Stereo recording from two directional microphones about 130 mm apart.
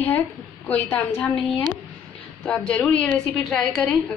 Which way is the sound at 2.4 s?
5° left (ahead or behind).